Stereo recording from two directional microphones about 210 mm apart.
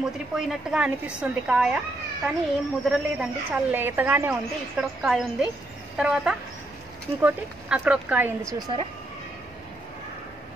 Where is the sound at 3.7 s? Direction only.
10° right (ahead or behind).